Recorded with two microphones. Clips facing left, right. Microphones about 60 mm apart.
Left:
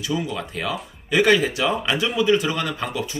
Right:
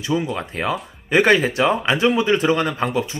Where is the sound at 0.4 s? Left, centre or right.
Right.